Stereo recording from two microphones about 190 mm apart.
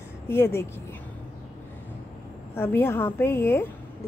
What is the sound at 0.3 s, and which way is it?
Speech, 10° left (ahead or behind).